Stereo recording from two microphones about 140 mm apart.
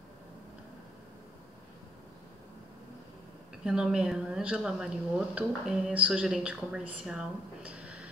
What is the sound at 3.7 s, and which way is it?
A woman's voice, 5° right (ahead or behind).